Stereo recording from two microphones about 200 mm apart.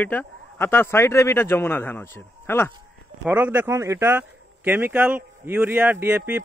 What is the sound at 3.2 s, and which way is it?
A man's voice, 10° right (ahead or behind).